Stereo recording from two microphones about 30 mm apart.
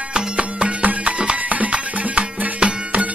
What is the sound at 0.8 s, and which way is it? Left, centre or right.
Music, right.